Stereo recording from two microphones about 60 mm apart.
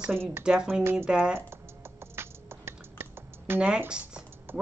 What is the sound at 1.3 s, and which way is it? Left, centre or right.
Computer keyboard, right.